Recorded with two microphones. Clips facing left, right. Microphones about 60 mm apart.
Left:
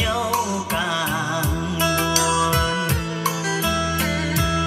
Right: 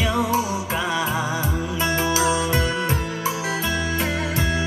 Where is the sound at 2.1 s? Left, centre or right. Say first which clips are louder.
Left 1 dB; right.